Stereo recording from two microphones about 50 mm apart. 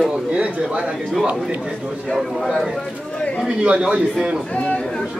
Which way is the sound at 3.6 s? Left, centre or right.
Right.